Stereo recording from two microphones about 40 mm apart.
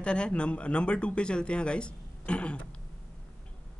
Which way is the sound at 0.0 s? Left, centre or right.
Left.